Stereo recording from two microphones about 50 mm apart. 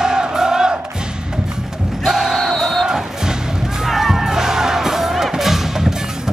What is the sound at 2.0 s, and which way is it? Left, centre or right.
Battle cry, centre.